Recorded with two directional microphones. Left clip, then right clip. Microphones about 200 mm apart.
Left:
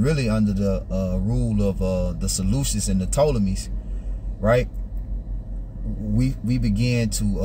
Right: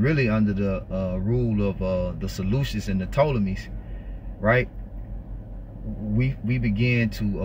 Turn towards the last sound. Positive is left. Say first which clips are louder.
# even
turn(degrees=25)  # may be behind; listen again after turning